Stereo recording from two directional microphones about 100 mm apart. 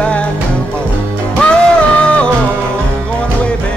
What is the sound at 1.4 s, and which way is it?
Music, 10° left (ahead or behind).